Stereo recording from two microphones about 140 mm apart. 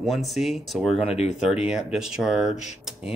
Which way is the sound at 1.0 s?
50° left (ahead or behind).